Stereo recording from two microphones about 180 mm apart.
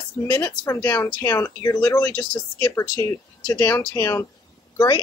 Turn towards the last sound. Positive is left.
turn(degrees=20)  # may be behind; listen again after turning